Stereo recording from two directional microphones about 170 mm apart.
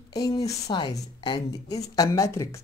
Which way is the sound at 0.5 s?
25° left (ahead or behind).